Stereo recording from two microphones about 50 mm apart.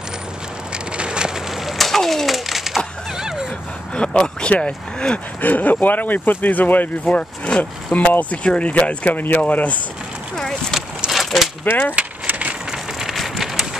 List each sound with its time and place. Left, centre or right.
0.9 s a sound: centre
1.7 s typewriter: centre
3.2 s a sound: centre
3.9 s speech: centre
5.4 s speech: left
7.1 s speech: left
8.0 s speech: left
8.5 s speech: left
11.1 s a sound: centre
11.6 s speech: left
11.9 s a sound: right
12.7 s rain on surface: centre